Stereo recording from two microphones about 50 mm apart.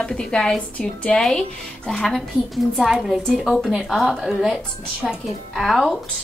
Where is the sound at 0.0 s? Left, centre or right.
Centre.